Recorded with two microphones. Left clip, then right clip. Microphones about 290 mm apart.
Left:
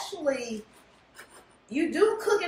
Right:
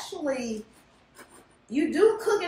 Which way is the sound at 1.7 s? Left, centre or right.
Centre.